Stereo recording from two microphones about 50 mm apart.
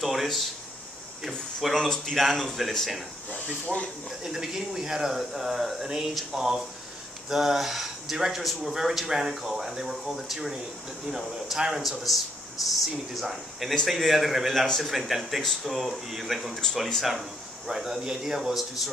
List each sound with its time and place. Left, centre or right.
0.0 s speech: centre
3.3 s speech: left
4.2 s speech: centre